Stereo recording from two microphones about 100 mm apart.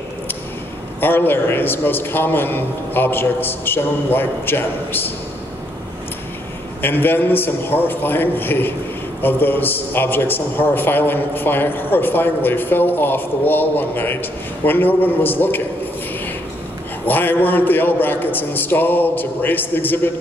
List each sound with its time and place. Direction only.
1.0 s a man's voice: 20° left (ahead or behind)
6.8 s a man's voice: 20° left (ahead or behind)
17.0 s a man's voice: 20° left (ahead or behind)